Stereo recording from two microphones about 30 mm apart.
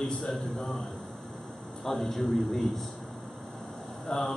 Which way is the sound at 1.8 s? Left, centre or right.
Centre.